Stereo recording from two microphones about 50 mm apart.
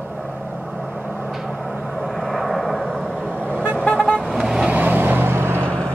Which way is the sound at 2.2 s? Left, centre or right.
Centre.